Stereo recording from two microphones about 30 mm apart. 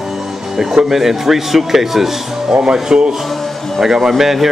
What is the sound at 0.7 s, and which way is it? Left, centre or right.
Speech, centre.